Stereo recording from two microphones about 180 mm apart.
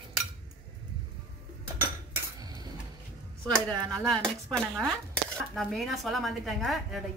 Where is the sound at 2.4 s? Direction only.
20° right (ahead or behind).